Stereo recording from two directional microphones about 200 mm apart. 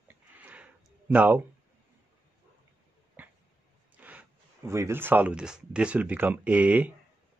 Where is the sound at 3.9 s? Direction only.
10° right (ahead or behind).